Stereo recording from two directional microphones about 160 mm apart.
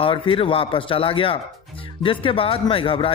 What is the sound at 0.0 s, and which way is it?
Speech, 30° left (ahead or behind).